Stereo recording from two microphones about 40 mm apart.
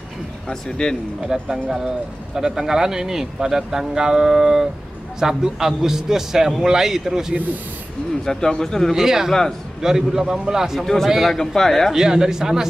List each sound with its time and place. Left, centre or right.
0.5 s speech: centre
1.2 s speech: centre
8.3 s speech: centre
8.9 s speech: centre
9.3 s speech: centre
9.8 s speech: centre
10.8 s speech: centre
11.1 s speech: centre
11.3 s speech: centre
11.9 s speech: centre